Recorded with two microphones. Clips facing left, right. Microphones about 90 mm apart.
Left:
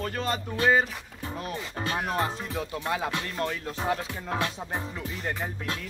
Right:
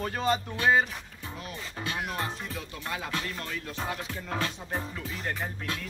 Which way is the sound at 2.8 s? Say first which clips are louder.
Left 2 dB; 25° left (ahead or behind).